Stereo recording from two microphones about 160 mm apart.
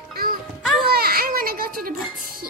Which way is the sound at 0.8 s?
75° right (ahead or behind).